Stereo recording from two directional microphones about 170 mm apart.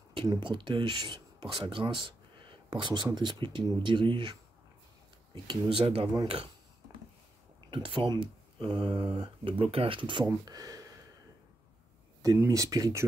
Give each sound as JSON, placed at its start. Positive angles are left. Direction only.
{"t": 0.1, "sound": "speech", "side_deg": -25}
{"t": 7.7, "sound": "speech", "side_deg": -30}
{"t": 12.2, "sound": "speech", "side_deg": -20}